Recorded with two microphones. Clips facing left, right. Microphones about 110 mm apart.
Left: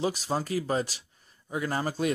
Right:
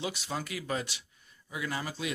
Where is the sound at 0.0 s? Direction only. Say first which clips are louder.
Left 7 dB; 35° left (ahead or behind).